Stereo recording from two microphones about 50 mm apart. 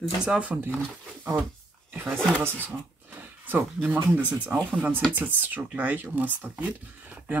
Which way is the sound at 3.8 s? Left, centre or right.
Right.